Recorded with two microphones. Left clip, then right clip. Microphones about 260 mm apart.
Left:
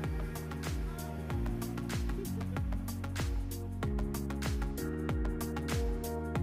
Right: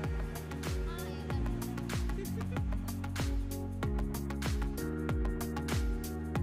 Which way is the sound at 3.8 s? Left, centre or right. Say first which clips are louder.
Left 2 dB; centre.